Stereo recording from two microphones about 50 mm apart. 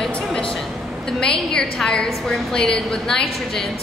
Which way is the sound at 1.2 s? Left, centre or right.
Centre.